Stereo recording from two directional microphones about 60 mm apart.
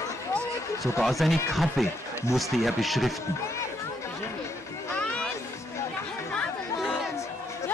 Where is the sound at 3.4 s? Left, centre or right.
Left.